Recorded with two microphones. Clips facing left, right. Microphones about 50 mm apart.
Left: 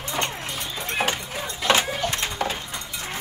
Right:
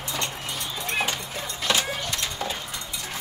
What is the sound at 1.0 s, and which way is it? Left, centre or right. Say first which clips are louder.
Dog: left 4 dB; left.